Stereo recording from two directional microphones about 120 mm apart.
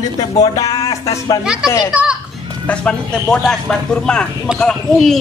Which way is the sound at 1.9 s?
10° right (ahead or behind).